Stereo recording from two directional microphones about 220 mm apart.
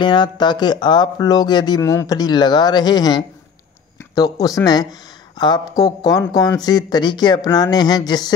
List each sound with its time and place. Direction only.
0.0 s speech: 20° left (ahead or behind)